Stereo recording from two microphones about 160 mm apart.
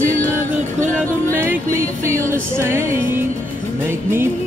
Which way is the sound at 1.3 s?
15° right (ahead or behind).